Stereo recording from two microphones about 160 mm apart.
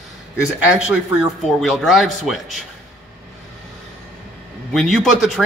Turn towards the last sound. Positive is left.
turn(degrees=0)  # may be behind; listen again after turning